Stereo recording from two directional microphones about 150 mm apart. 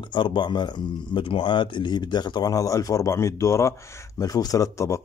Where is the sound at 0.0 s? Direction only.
30° left (ahead or behind).